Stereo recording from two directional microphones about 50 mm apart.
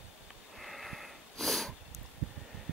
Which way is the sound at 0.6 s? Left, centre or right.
Centre.